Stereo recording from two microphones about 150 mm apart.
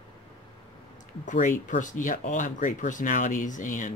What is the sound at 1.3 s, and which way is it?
Speech, 60° left (ahead or behind).